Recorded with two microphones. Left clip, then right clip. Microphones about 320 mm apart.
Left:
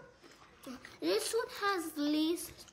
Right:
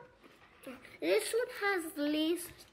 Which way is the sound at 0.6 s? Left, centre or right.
Centre.